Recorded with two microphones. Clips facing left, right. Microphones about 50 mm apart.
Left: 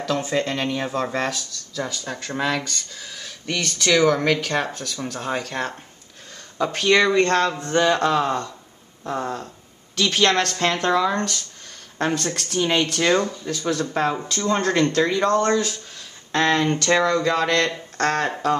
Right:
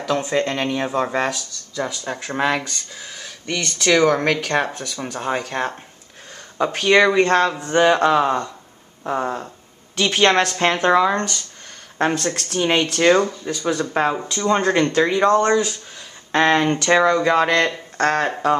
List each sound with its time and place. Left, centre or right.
0.0 s speech: centre
2.3 s a woman's voice: right
2.6 s speech: centre
3.6 s a woman's voice: centre
11.1 s speech: centre
13.0 s speech: centre
16.3 s speech: right